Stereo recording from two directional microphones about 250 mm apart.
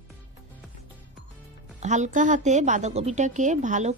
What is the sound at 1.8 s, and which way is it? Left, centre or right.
A woman's voice, right.